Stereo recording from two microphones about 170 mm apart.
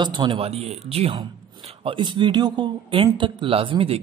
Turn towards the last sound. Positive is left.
turn(degrees=-35)  # may be behind; listen again after turning